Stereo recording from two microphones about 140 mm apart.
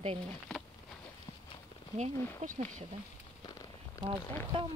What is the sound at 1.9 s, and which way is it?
Speech, 50° right (ahead or behind).